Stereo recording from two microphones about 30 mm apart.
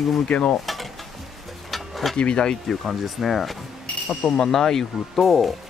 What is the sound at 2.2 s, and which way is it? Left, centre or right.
Speech, left.